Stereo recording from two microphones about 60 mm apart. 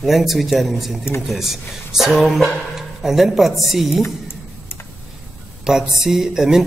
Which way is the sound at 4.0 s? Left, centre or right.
Left.